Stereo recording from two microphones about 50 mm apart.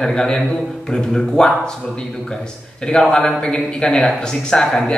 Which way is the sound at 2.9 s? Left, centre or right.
Centre.